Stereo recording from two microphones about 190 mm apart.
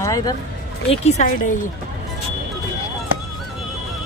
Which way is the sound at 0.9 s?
40° left (ahead or behind).